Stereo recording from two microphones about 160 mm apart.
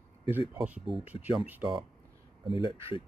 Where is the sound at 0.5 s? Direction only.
5° right (ahead or behind).